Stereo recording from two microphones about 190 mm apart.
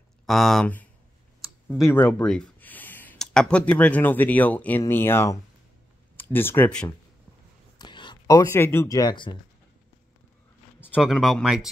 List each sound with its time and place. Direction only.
0.3 s speech: centre (ahead or behind)
1.4 s a sound: centre (ahead or behind)
1.9 s speech: 5° left (ahead or behind)
7.8 s speech: 25° left (ahead or behind)
11.0 s speech: centre (ahead or behind)